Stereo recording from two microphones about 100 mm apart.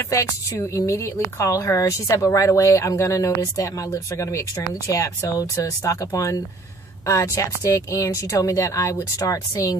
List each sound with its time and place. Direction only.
0.0 s speech: 30° left (ahead or behind)